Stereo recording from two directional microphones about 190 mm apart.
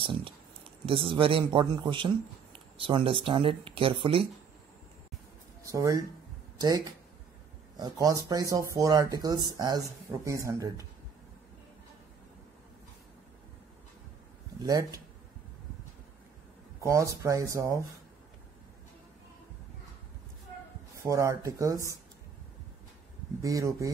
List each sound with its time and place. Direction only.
0.0 s speech: 25° right (ahead or behind)
5.7 s speech: 15° right (ahead or behind)
14.6 s speech: 20° right (ahead or behind)
16.8 s speech: 15° right (ahead or behind)
21.0 s speech: 15° right (ahead or behind)
23.4 s speech: 15° right (ahead or behind)